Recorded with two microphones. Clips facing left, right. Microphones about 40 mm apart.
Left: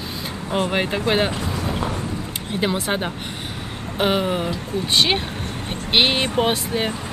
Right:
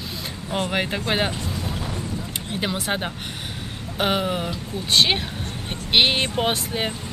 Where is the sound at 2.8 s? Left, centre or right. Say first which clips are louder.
Left 2 dB; centre.